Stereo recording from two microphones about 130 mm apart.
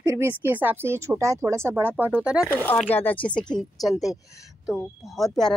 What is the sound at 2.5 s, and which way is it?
Speech, 15° left (ahead or behind).